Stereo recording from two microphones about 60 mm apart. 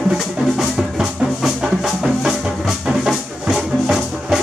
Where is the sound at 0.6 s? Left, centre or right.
Centre.